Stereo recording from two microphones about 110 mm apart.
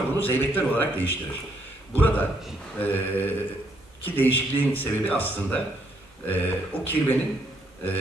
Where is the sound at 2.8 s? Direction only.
15° left (ahead or behind).